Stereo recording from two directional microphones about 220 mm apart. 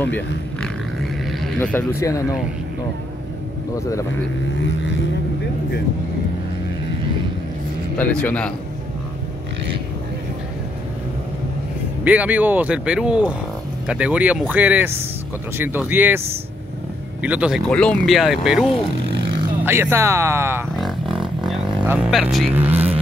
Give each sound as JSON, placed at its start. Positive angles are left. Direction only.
{"t": 0.0, "sound": "speech", "side_deg": 5}
{"t": 8.0, "sound": "speech", "side_deg": 5}
{"t": 12.0, "sound": "speech", "side_deg": -5}
{"t": 17.2, "sound": "speech", "side_deg": -5}
{"t": 19.0, "sound": "vehicle", "side_deg": -50}
{"t": 19.6, "sound": "speech", "side_deg": -10}
{"t": 20.7, "sound": "music", "side_deg": 0}
{"t": 22.6, "sound": "vehicle", "side_deg": -10}